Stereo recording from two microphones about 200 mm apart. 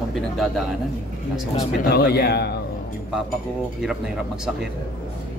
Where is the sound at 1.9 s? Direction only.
55° left (ahead or behind).